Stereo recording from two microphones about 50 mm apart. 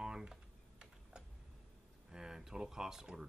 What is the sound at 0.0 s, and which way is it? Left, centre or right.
Typing, centre.